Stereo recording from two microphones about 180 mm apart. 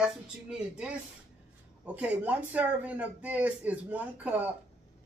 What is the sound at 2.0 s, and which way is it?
Speech, 5° right (ahead or behind).